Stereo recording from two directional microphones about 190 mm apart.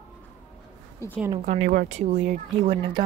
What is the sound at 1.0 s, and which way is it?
Speech, 15° left (ahead or behind).